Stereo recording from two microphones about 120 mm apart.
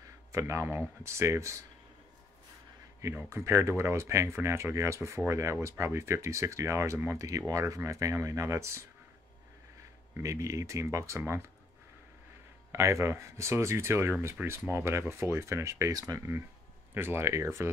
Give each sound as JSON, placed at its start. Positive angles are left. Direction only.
{"t": 0.3, "sound": "speech", "side_deg": -25}
{"t": 3.0, "sound": "speech", "side_deg": -25}
{"t": 10.1, "sound": "speech", "side_deg": -25}
{"t": 12.7, "sound": "speech", "side_deg": -25}